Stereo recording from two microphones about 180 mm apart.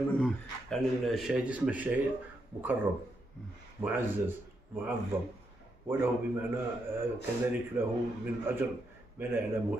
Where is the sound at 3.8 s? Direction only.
10° right (ahead or behind).